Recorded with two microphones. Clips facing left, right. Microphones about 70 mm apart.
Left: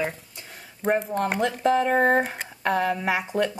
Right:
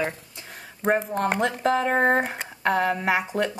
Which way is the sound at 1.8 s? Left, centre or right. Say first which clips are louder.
Right 1 dB; right.